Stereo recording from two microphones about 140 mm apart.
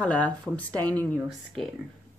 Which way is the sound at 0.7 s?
25° right (ahead or behind).